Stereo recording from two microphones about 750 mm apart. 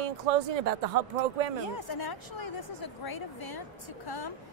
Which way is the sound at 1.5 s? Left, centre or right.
Left.